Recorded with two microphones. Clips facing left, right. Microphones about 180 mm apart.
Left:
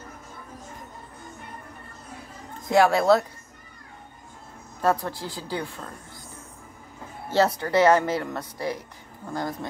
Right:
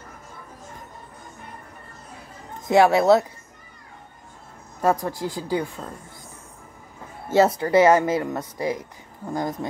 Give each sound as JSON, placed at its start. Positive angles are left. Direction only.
{"t": 2.7, "sound": "speech", "side_deg": -20}
{"t": 4.8, "sound": "speech", "side_deg": -15}
{"t": 7.3, "sound": "speech", "side_deg": -20}